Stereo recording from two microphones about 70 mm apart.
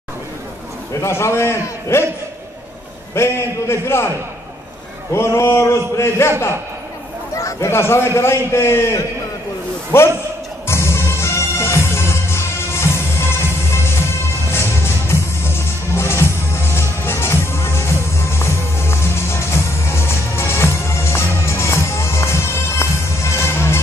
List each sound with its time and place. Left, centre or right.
1.0 s a man's voice: left
3.2 s a man's voice: left
5.1 s a man's voice: left
7.3 s a man's voice: left
9.9 s a man's voice: left
10.7 s music: left